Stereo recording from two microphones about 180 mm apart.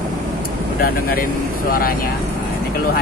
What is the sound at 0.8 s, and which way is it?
Speech, 55° left (ahead or behind).